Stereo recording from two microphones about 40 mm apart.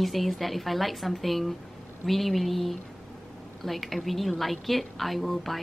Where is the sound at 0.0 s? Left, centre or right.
Centre.